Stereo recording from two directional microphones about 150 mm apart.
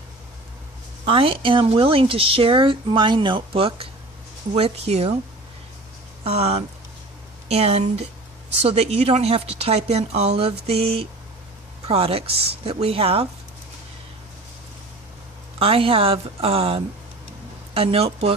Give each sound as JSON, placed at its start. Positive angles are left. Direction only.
{"t": 1.0, "sound": "speech", "side_deg": -35}
{"t": 6.2, "sound": "speech", "side_deg": -45}
{"t": 15.6, "sound": "speech", "side_deg": -40}